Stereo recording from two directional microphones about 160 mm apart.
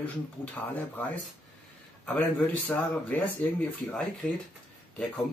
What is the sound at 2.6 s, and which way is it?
A man's voice, 5° left (ahead or behind).